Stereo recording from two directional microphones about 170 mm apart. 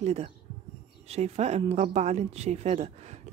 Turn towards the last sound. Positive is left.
turn(degrees=-40)  # may be behind; listen again after turning